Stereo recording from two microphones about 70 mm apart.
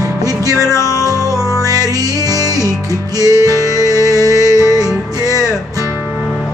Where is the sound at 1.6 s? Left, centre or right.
Right.